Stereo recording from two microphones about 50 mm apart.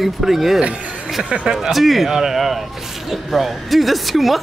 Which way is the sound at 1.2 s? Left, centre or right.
Right.